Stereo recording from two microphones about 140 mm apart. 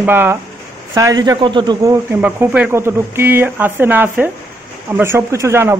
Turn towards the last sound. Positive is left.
turn(degrees=-20)  # may be behind; listen again after turning